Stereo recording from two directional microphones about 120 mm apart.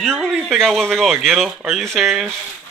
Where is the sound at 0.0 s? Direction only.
Centre (ahead or behind).